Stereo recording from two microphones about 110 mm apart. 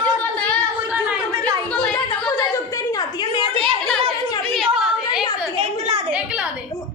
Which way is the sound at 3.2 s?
45° left (ahead or behind).